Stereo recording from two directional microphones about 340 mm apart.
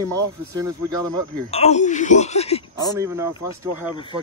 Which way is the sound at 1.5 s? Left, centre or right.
Centre.